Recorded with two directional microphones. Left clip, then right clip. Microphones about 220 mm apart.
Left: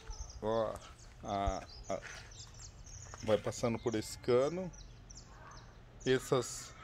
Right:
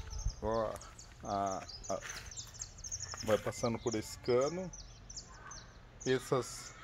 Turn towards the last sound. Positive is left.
turn(degrees=5)  # may be behind; listen again after turning